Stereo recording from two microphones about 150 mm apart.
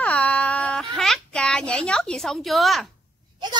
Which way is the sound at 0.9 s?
Centre (ahead or behind).